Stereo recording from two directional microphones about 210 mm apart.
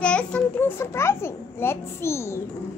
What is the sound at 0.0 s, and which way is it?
A child's voice, 5° left (ahead or behind).